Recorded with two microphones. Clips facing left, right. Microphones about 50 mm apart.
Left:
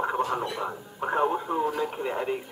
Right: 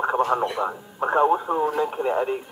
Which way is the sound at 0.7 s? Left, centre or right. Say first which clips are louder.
Right 5 dB; right.